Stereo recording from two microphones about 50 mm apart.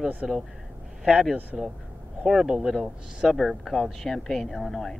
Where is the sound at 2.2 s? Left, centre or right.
Centre.